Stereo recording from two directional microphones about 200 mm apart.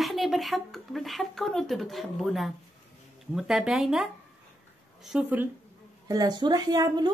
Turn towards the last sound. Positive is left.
turn(degrees=-20)  # may be behind; listen again after turning